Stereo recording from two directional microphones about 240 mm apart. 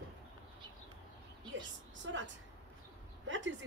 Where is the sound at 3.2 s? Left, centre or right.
Right.